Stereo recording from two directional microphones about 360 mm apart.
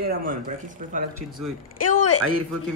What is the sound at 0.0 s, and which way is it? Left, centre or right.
Speech, right.